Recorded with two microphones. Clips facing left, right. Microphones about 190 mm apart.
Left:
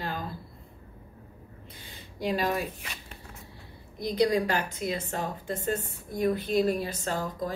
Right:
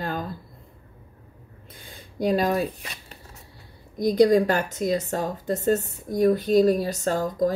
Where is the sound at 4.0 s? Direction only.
45° right (ahead or behind).